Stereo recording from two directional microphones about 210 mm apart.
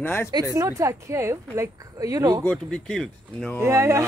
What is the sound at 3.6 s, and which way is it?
Speech, 15° right (ahead or behind).